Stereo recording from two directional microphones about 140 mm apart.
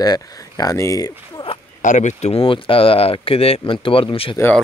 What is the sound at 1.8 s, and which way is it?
Speech, 60° left (ahead or behind).